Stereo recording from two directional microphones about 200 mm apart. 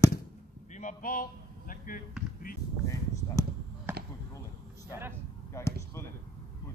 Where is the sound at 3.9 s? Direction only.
10° right (ahead or behind).